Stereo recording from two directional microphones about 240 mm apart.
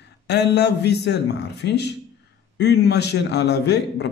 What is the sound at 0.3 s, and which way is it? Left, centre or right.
A man's voice, left.